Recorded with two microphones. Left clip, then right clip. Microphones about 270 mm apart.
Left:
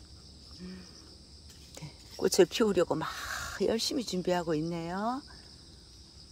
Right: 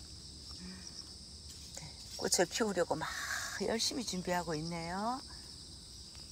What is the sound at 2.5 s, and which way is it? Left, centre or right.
Speech, left.